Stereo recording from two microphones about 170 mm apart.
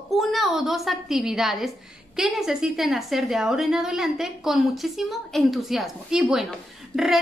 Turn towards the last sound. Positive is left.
turn(degrees=-5)  # may be behind; listen again after turning